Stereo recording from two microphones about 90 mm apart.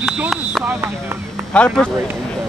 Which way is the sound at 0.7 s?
25° right (ahead or behind).